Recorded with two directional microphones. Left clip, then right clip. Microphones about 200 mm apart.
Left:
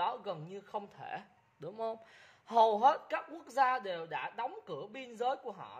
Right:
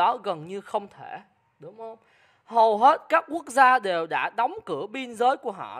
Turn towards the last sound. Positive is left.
turn(degrees=-35)  # may be behind; listen again after turning